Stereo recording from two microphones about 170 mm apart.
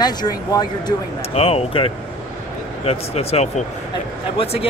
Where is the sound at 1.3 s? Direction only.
35° left (ahead or behind).